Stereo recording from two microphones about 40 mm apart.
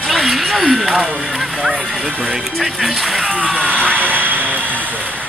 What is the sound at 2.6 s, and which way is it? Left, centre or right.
Speech, centre.